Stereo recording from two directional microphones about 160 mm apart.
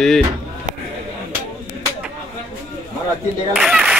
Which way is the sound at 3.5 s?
Centre (ahead or behind).